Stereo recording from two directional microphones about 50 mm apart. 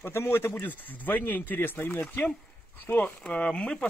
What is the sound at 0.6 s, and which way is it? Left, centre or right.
Speech, left.